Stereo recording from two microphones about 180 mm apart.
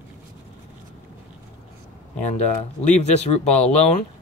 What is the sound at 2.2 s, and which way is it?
Speech, 40° left (ahead or behind).